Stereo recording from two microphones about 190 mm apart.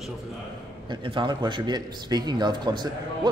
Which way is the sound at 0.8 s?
25° right (ahead or behind).